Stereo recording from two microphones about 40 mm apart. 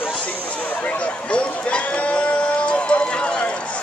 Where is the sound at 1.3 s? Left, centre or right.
Left.